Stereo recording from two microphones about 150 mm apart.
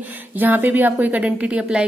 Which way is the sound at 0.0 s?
10° right (ahead or behind).